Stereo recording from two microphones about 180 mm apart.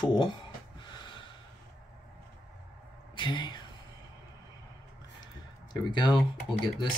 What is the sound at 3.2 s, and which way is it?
Speech, 25° left (ahead or behind).